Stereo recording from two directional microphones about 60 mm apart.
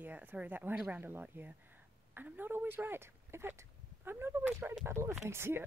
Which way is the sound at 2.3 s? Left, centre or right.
Right.